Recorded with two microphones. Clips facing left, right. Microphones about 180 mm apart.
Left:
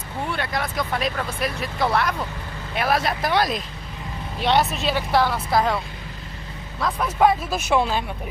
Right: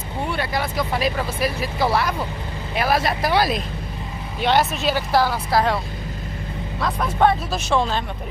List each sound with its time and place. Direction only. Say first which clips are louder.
0.3 s speech: right 2 dB; centre (ahead or behind)
6.8 s speech: even; 5° left (ahead or behind)